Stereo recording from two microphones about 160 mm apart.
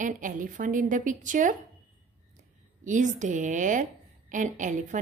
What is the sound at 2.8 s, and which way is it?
A woman's voice, 50° right (ahead or behind).